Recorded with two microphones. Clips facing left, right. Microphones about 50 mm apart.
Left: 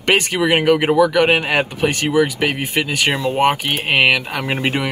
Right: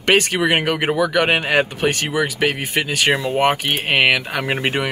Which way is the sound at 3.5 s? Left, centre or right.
Centre.